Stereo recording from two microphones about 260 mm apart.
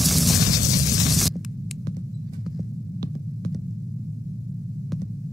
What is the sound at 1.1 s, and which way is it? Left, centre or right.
Static, centre.